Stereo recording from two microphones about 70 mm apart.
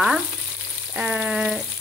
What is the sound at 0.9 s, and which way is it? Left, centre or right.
Frying, centre.